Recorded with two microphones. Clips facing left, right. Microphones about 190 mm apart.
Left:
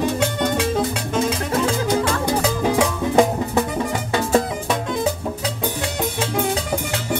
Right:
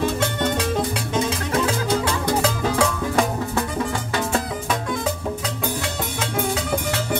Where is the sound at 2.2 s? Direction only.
15° left (ahead or behind).